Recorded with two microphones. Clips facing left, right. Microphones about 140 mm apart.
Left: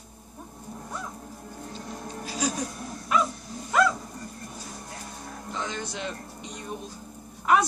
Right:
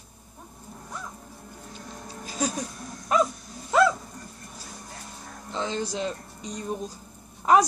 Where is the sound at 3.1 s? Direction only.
35° right (ahead or behind).